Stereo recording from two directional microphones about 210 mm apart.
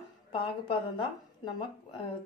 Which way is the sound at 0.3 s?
25° left (ahead or behind).